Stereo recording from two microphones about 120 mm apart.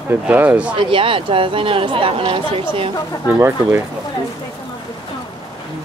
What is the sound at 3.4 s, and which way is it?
Speech, 20° right (ahead or behind).